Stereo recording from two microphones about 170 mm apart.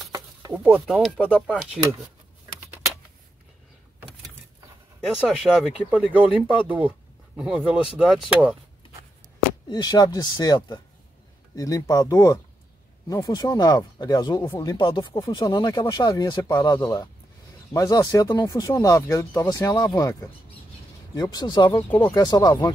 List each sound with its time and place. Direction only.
0.1 s a sound: 20° right (ahead or behind)
0.7 s speech: centre (ahead or behind)
5.1 s speech: 5° right (ahead or behind)
9.7 s speech: 25° left (ahead or behind)